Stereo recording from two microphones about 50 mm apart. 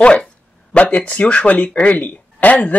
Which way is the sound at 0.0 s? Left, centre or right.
Centre.